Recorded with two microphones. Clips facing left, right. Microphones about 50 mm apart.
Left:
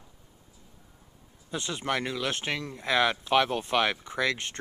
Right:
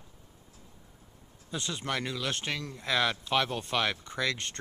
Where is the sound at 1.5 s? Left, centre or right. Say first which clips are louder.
Left 3 dB; centre.